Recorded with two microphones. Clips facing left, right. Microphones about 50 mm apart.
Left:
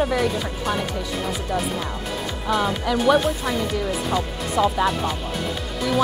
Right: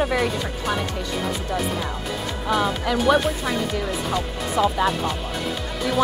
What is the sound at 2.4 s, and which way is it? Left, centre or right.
Speech, centre.